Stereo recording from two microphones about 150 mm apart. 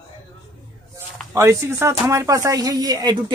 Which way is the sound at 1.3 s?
20° right (ahead or behind).